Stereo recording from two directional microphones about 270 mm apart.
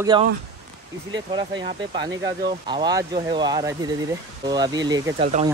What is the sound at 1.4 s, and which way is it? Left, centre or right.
Speech, centre.